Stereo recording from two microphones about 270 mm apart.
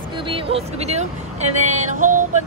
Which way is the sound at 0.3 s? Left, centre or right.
Right.